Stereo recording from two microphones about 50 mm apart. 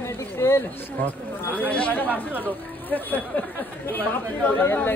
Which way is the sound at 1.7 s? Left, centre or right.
Left.